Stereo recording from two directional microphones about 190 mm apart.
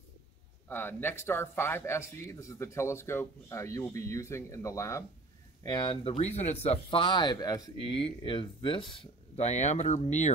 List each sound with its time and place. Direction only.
0.7 s speech: 10° left (ahead or behind); by 10.3 s 35° left (ahead or behind)